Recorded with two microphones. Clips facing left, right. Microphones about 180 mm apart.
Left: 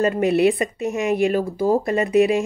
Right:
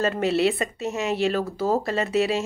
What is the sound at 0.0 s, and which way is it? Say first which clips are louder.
A woman's voice: left 4 dB; 15° left (ahead or behind).